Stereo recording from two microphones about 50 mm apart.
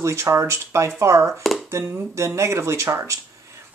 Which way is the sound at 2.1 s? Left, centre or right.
Right.